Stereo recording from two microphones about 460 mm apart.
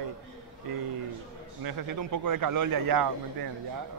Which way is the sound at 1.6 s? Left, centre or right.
Right.